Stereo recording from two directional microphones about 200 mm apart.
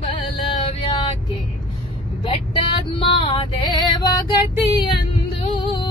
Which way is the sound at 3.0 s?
25° left (ahead or behind).